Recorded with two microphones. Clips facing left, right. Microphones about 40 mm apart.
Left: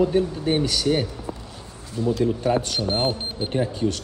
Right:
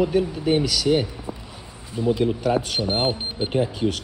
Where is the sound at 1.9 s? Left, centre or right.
Centre.